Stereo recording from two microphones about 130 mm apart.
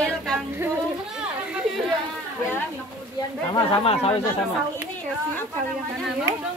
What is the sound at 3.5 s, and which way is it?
Speech, 45° left (ahead or behind).